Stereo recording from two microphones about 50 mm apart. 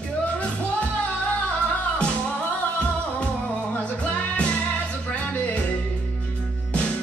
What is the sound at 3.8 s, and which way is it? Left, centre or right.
Music, left.